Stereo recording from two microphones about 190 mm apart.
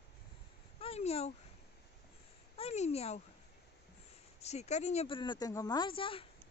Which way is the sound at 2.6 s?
35° left (ahead or behind).